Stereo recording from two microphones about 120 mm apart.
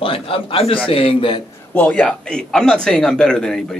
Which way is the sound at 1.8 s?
10° left (ahead or behind).